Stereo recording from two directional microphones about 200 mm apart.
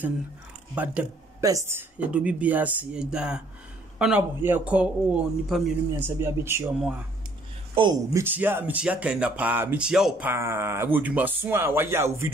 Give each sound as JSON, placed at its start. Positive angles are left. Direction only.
{"t": 0.7, "sound": "speech", "side_deg": -10}
{"t": 7.7, "sound": "speech", "side_deg": -25}
{"t": 8.2, "sound": "speech", "side_deg": -10}